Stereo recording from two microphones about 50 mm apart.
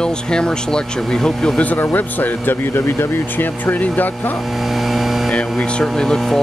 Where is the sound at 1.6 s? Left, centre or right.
Left.